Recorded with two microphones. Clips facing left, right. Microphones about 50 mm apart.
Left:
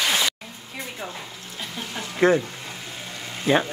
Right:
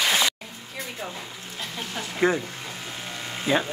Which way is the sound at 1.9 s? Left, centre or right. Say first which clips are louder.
Left 4 dB; centre.